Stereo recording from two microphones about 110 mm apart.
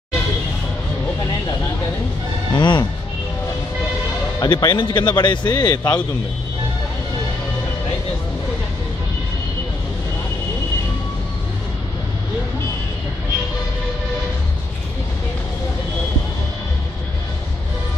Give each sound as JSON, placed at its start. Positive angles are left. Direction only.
{"t": 2.5, "sound": "music", "side_deg": 45}
{"t": 4.4, "sound": "speech", "side_deg": 40}